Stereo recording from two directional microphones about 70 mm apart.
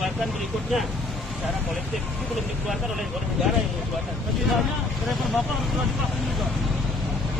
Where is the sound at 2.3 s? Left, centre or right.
Centre.